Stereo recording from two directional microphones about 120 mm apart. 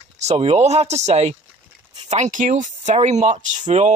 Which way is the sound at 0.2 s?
60° right (ahead or behind).